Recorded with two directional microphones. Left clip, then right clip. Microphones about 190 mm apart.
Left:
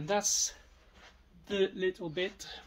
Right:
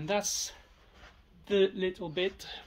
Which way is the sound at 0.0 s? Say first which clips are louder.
Left 1 dB; 35° right (ahead or behind).